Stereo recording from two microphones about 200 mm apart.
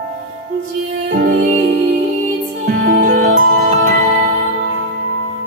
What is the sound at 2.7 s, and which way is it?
Music, 50° right (ahead or behind).